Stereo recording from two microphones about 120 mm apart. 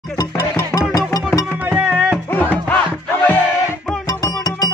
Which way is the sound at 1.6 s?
15° right (ahead or behind).